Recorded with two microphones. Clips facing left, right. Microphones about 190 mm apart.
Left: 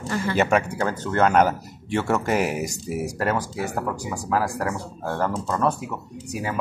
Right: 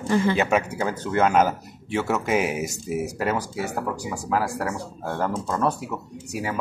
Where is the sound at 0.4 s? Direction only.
5° right (ahead or behind).